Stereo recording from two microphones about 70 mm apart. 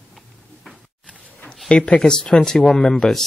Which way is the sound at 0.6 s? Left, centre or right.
Centre.